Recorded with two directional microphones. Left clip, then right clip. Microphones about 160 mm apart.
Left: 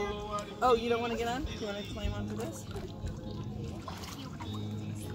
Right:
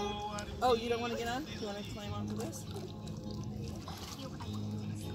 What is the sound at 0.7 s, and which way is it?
Speech, 20° left (ahead or behind).